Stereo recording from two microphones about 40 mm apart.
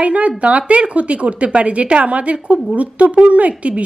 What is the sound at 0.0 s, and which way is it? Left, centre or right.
Speech, right.